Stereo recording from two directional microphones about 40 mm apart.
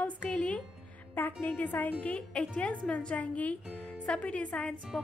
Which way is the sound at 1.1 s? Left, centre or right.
Left.